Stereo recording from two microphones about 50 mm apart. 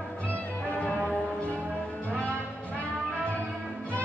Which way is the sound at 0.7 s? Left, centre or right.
Left.